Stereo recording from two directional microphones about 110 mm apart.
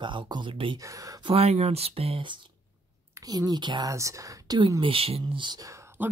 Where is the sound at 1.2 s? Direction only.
65° right (ahead or behind); by 2.4 s 50° right (ahead or behind).